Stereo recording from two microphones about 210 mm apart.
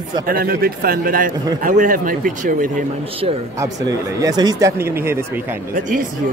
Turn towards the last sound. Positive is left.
turn(degrees=-10)  # may be behind; listen again after turning